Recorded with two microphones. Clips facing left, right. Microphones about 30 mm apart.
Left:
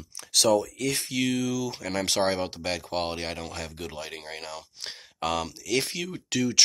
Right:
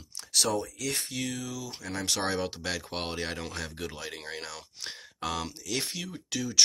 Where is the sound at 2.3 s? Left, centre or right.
Left.